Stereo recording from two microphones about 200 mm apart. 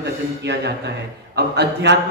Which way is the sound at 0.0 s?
60° right (ahead or behind).